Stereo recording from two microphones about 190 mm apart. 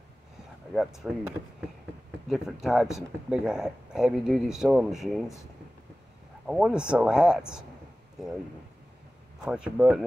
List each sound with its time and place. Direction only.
0.7 s speech: 5° right (ahead or behind)
6.4 s speech: 5° right (ahead or behind)
9.4 s speech: 5° right (ahead or behind)